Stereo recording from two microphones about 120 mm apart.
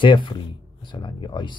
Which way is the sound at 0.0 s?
45° left (ahead or behind).